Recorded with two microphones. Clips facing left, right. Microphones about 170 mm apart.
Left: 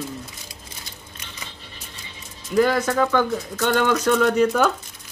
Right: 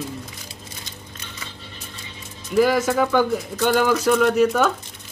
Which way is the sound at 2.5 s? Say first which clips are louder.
Right 1 dB; 5° right (ahead or behind).